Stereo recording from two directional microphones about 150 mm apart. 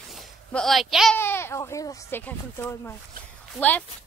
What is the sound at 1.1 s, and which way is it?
Speech, 15° left (ahead or behind).